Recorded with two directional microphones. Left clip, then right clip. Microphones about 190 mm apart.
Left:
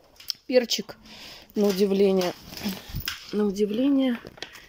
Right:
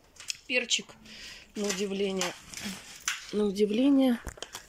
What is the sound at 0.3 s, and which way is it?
Speech, 30° left (ahead or behind).